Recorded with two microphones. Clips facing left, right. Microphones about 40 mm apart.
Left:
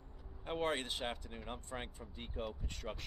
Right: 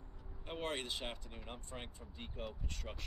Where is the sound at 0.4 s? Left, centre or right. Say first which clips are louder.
Left 4 dB; centre.